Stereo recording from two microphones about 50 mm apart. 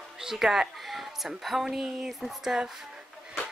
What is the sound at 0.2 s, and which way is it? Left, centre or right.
Speech, centre.